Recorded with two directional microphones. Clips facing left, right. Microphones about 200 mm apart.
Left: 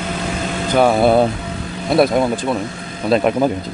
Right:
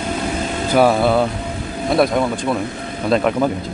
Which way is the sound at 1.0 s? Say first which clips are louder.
Left 3 dB; 20° left (ahead or behind).